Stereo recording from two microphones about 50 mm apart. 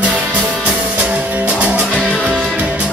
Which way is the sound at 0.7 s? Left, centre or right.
Right.